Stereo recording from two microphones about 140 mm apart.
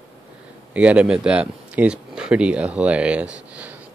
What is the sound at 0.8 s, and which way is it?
Speech, 10° right (ahead or behind).